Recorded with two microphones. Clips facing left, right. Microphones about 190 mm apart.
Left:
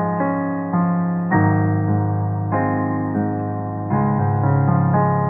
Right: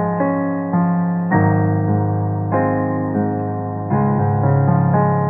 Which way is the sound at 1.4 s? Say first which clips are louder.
Right 2 dB; 40° right (ahead or behind).